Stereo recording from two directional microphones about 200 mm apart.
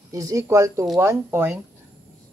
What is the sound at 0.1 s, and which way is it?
Speech, 15° right (ahead or behind).